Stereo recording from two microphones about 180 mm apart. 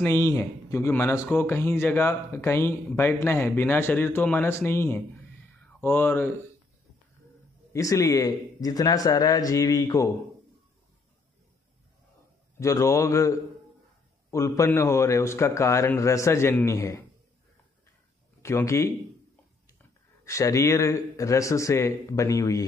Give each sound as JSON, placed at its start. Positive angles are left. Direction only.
{"t": 0.0, "sound": "speech", "side_deg": 15}
{"t": 7.7, "sound": "speech", "side_deg": 20}
{"t": 12.5, "sound": "speech", "side_deg": 15}
{"t": 18.4, "sound": "a man's voice", "side_deg": 15}